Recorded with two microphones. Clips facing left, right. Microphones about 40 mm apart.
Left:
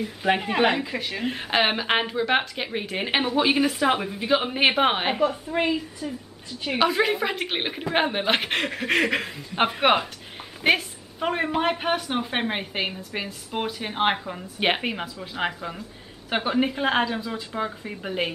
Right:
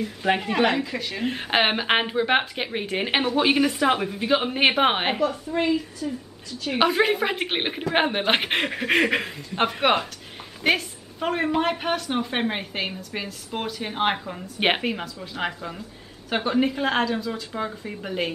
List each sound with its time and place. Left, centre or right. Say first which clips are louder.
0.0 s speech: even; centre
1.2 s speech: right 1 dB; centre
5.2 s speech: even; centre
6.8 s speech: right 2 dB; centre
9.4 s speech: left 3 dB; centre